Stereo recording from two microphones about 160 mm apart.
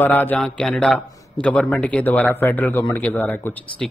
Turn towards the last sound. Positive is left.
turn(degrees=10)  # may be behind; listen again after turning